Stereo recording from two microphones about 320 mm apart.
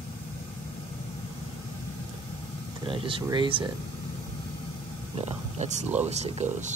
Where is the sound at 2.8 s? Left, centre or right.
Centre.